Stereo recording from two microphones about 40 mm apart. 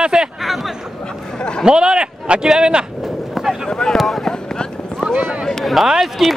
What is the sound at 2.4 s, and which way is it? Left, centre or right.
Speech, centre.